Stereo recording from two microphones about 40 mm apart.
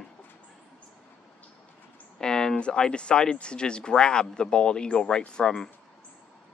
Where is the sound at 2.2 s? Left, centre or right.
Centre.